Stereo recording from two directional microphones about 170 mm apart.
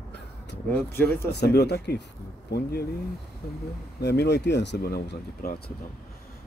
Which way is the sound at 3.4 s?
65° left (ahead or behind).